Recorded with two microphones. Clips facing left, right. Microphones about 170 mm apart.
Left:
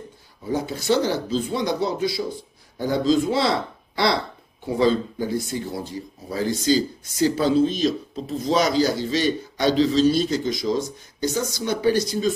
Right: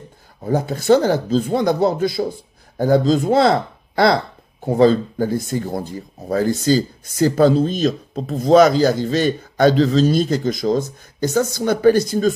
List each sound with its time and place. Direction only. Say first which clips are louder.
0.4 s speech: right 5 dB; 50° right (ahead or behind)